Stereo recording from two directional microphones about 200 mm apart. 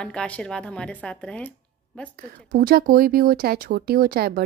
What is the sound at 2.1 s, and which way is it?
Speech, 45° right (ahead or behind).